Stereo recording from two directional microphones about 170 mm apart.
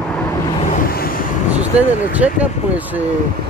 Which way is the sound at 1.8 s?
10° right (ahead or behind).